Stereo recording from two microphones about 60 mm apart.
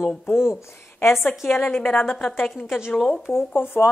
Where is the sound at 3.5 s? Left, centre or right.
Left.